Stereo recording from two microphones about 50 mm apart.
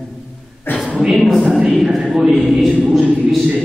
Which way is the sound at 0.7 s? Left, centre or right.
Left.